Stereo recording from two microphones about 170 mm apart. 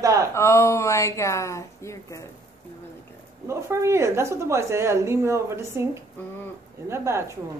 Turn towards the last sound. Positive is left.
turn(degrees=-15)  # may be behind; listen again after turning